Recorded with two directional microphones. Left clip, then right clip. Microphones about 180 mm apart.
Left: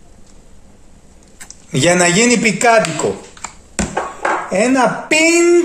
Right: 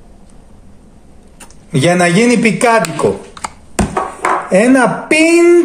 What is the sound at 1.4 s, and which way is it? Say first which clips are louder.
Speech: right 1 dB; 25° left (ahead or behind).